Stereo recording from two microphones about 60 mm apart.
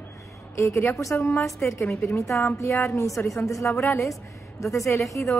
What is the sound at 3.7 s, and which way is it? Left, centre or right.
Speech, left.